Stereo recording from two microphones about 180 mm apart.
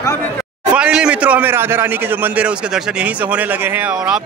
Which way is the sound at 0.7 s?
5° right (ahead or behind).